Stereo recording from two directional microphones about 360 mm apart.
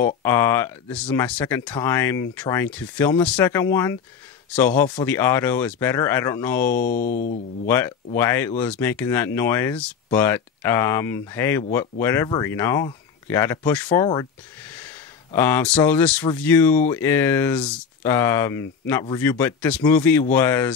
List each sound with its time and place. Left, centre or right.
0.0 s speech: centre
6.8 s speech: left
7.6 s speech: centre
15.3 s speech: centre